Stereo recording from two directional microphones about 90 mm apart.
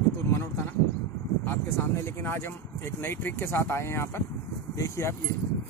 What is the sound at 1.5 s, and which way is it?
Speech, 25° left (ahead or behind).